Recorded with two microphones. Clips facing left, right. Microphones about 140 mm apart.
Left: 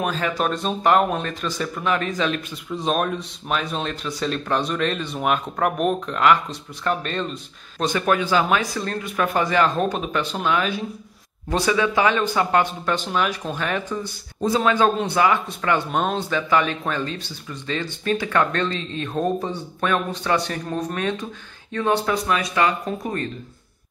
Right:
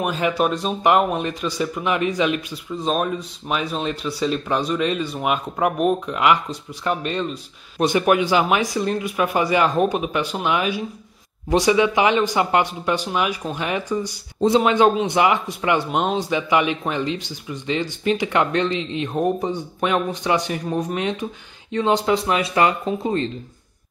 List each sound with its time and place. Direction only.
0.0 s speech: 10° right (ahead or behind)
2.5 s speech: centre (ahead or behind)
6.0 s speech: 10° right (ahead or behind)